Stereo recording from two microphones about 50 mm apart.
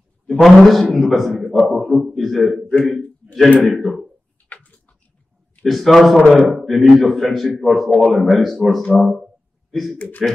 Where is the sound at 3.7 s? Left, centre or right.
Centre.